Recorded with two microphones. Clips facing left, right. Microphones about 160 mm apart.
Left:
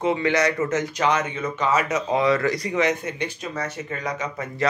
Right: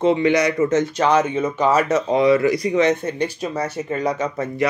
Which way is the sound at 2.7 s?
30° right (ahead or behind).